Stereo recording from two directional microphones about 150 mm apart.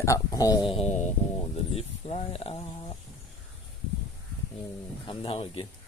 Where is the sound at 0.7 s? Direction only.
50° left (ahead or behind).